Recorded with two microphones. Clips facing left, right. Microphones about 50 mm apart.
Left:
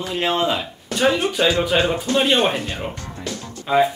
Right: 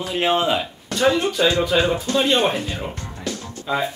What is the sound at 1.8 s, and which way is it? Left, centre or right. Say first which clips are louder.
Speech: even; centre.